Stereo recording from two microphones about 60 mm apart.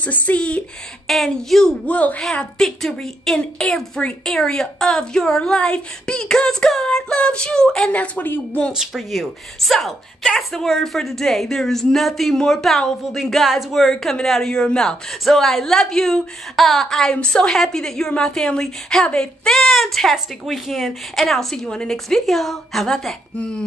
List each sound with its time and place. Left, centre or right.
0.0 s speech: left
1.0 s speech: centre
1.9 s speech: left
2.6 s a woman's voice: centre
7.9 s speech: left
8.7 s a woman's voice: centre